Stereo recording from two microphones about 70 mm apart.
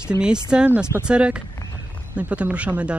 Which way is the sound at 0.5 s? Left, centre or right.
Centre.